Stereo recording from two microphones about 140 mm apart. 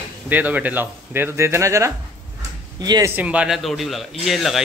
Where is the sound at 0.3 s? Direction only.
10° right (ahead or behind); by 3.1 s 25° right (ahead or behind).